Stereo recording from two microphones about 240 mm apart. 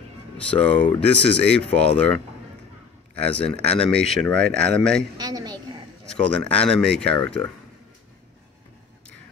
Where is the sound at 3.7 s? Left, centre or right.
Centre.